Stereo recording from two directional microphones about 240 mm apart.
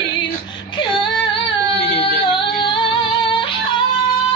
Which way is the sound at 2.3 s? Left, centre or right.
Left.